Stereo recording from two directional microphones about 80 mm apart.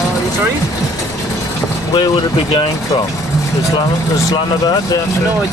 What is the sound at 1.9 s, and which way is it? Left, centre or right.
Speech, left.